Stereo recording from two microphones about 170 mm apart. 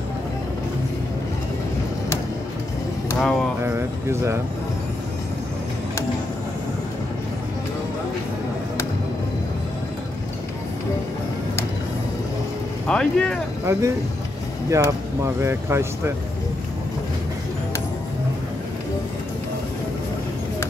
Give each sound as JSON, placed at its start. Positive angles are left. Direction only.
{"t": 3.2, "sound": "speech", "side_deg": 5}
{"t": 3.6, "sound": "speech", "side_deg": -15}
{"t": 12.8, "sound": "speech", "side_deg": 5}
{"t": 13.7, "sound": "speech", "side_deg": -15}